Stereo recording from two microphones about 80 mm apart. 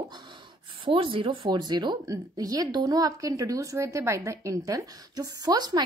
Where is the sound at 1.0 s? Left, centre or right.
Right.